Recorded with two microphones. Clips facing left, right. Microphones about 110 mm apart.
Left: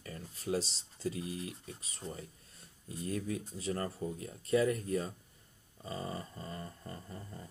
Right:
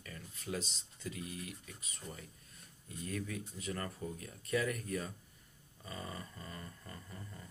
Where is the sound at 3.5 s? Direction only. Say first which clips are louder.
Left 5 dB; 30° left (ahead or behind).